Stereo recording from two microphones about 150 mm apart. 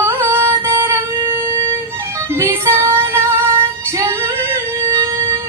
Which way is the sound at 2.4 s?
15° right (ahead or behind).